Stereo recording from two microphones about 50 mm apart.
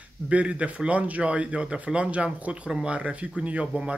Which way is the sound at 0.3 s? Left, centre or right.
Right.